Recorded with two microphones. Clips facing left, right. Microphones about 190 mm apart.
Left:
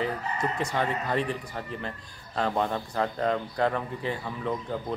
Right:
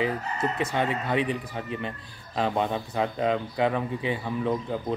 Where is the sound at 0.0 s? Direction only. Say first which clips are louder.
Right 2 dB; 5° right (ahead or behind).